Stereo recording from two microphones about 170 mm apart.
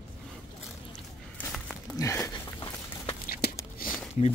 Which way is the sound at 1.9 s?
20° left (ahead or behind).